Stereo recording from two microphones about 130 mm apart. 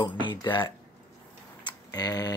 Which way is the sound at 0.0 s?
35° left (ahead or behind).